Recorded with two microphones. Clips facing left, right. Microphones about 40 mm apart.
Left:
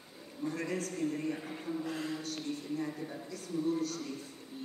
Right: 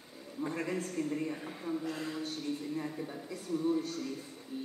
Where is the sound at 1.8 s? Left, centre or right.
Centre.